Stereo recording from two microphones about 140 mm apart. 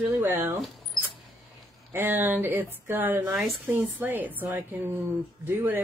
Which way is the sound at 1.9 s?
15° right (ahead or behind).